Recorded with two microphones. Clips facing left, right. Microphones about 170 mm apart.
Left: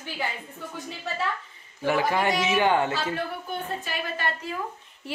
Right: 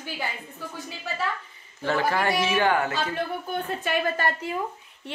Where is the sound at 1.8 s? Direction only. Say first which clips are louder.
Left 1 dB; 15° left (ahead or behind).